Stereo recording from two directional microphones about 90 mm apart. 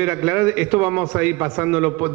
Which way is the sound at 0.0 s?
15° right (ahead or behind).